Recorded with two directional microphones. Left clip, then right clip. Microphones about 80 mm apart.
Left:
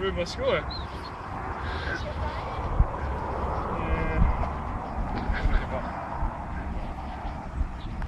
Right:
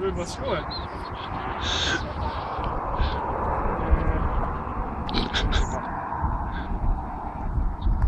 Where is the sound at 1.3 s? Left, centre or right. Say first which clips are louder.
Right 4 dB; centre.